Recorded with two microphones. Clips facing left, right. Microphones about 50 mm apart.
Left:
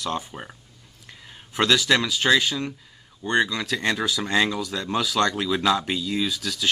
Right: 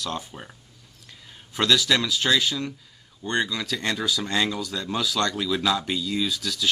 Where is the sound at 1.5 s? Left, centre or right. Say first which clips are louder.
Left 2 dB; left.